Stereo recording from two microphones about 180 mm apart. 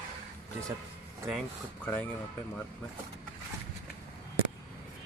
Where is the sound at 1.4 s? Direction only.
5° left (ahead or behind).